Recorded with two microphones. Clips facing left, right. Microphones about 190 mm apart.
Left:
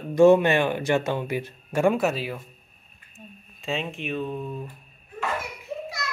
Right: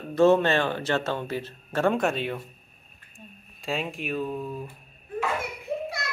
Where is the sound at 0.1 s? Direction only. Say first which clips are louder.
Left 3 dB; 15° left (ahead or behind).